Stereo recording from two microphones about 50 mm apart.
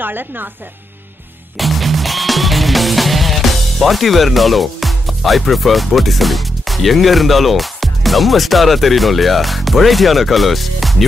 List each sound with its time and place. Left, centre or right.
0.0 s speech: right
1.6 s music: centre